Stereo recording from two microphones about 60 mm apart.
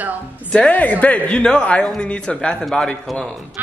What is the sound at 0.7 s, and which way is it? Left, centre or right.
A man's voice, left.